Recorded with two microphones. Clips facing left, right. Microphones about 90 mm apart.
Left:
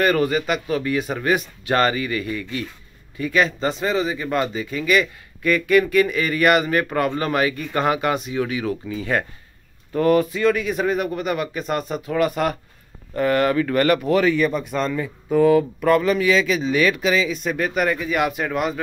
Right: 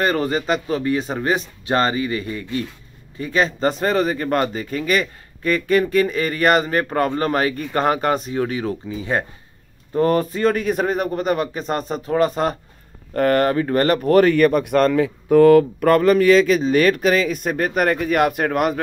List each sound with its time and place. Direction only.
0.0 s a man's voice: 30° right (ahead or behind)
3.6 s a man's voice: 50° right (ahead or behind); by 9.2 s 25° right (ahead or behind)
9.9 s a man's voice: 35° right (ahead or behind)
13.1 s a man's voice: 50° right (ahead or behind)
14.0 s speech: 50° right (ahead or behind)